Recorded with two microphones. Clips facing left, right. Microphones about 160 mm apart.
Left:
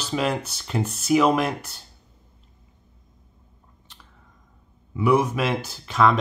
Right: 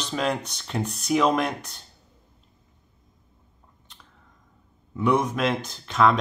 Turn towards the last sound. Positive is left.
turn(degrees=0)  # may be behind; listen again after turning